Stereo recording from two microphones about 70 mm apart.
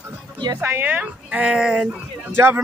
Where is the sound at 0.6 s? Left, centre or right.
Right; by 1.9 s centre.